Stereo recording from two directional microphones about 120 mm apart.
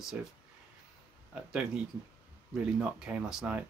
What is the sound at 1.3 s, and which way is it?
Speech, 5° right (ahead or behind).